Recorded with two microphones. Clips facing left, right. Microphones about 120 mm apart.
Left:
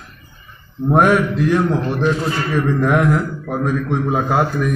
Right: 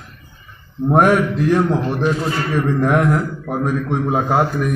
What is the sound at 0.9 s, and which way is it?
Speech, 40° right (ahead or behind).